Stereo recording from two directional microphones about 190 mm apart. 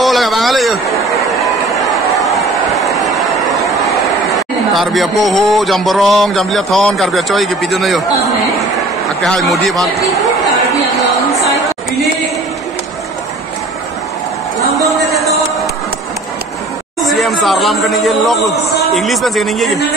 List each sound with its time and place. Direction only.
0.0 s a sound: centre (ahead or behind)
1.4 s run: centre (ahead or behind)
2.2 s vehicle: centre (ahead or behind)
9.2 s a man's voice: centre (ahead or behind)
10.7 s a sound: 15° left (ahead or behind)
14.9 s music: centre (ahead or behind)
17.0 s a man's voice: centre (ahead or behind)